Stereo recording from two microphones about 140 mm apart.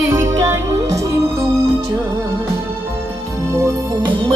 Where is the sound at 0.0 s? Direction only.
20° right (ahead or behind).